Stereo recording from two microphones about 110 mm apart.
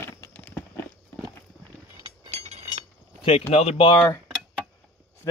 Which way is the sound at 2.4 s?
80° right.